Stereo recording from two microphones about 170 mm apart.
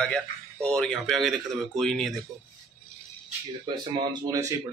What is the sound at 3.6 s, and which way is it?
Speech, 25° right (ahead or behind).